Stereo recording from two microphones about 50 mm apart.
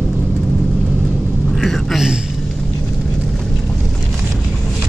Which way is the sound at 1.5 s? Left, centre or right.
Centre.